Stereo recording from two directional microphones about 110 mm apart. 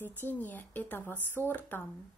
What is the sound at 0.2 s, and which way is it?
Speech, 15° left (ahead or behind).